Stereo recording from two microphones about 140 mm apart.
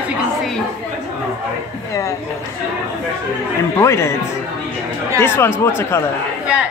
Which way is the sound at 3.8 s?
20° left (ahead or behind).